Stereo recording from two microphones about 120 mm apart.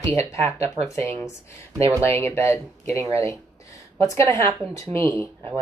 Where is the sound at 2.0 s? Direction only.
20° left (ahead or behind).